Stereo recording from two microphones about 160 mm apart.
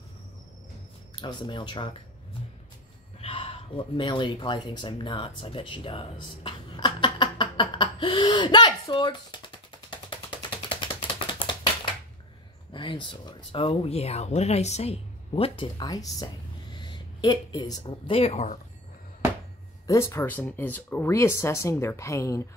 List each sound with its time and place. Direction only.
1.1 s speech: 30° left (ahead or behind)
3.2 s a sound: 35° left (ahead or behind)
11.2 s typing: 30° left (ahead or behind)
12.7 s speech: 30° left (ahead or behind)
19.9 s speech: 15° left (ahead or behind)